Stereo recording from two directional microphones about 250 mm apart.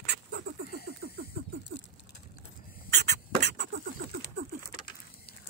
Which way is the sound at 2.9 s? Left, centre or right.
Right.